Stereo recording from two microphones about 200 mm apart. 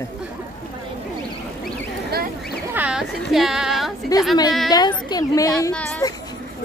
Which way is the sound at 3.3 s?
Centre (ahead or behind).